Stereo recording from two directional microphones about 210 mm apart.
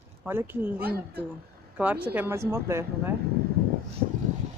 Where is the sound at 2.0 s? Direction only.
10° right (ahead or behind).